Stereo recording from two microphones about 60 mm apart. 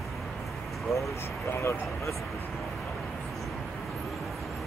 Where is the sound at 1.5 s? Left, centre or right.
Left.